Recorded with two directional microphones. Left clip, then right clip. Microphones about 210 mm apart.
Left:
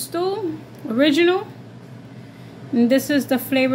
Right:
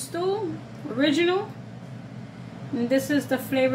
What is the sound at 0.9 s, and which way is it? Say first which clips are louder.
Speech: left 6 dB; 45° left (ahead or behind).